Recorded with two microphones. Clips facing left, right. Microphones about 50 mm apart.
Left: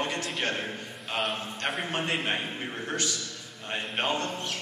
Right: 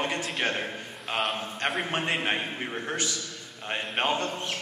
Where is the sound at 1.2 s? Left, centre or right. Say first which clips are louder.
Right 2 dB; centre.